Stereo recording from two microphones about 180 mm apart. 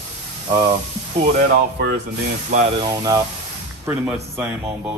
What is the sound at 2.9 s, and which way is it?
Speech, 20° right (ahead or behind).